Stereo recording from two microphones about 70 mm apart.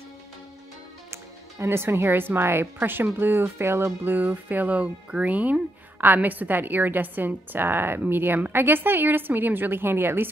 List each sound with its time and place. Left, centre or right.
1.1 s speech: right